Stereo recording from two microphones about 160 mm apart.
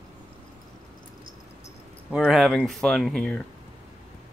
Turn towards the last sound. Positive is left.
turn(degrees=5)  # may be behind; listen again after turning